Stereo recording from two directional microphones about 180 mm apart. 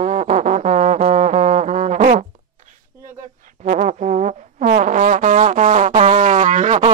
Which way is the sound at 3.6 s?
45° right (ahead or behind).